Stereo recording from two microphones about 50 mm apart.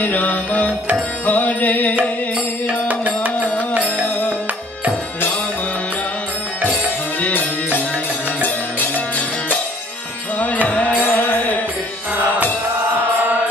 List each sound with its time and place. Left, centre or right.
0.0 s music: left
3.8 s music: left
7.2 s music: left
10.7 s music: left